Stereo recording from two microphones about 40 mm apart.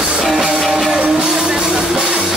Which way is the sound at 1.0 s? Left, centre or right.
Right.